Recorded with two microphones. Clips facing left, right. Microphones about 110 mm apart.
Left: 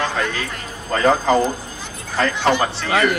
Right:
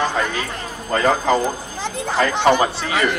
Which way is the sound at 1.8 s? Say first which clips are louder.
Right 12 dB; 90° right.